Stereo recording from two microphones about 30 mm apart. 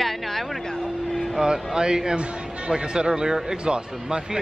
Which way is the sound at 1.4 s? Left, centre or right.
Right.